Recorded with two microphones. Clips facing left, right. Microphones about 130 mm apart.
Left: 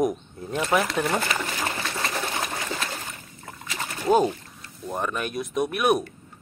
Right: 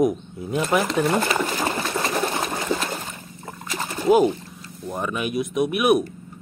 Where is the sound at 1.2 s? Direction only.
35° right (ahead or behind).